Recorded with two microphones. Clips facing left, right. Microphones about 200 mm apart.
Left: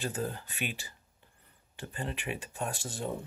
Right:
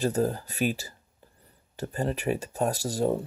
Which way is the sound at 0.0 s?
40° right (ahead or behind).